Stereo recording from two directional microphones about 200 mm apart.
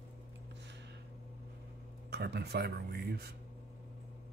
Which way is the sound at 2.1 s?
55° right (ahead or behind).